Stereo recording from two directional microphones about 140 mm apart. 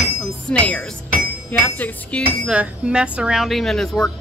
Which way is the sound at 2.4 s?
5° right (ahead or behind).